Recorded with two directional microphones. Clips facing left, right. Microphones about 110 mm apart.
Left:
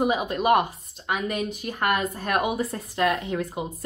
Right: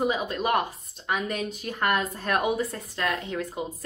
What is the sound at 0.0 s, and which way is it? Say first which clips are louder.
A woman's voice: left 3 dB; 15° left (ahead or behind).